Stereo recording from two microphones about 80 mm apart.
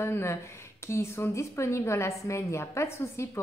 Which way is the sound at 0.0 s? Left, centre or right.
Left.